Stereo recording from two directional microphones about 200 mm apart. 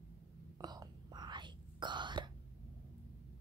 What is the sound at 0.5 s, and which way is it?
Whispering, 20° right (ahead or behind).